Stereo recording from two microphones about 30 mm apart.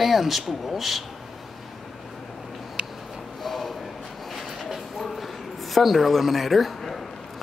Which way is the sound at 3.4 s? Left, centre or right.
Centre.